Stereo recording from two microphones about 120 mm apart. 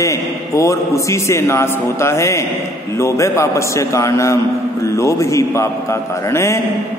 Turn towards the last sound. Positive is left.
turn(degrees=25)  # may be behind; listen again after turning